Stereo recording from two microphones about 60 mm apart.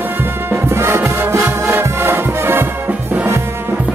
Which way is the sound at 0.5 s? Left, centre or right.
Right.